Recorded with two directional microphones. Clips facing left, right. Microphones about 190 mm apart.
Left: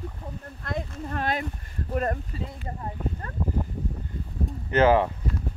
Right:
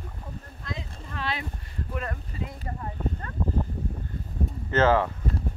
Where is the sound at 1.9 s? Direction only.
45° left (ahead or behind).